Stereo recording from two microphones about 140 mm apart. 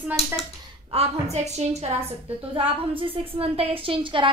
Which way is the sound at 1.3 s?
50° right (ahead or behind).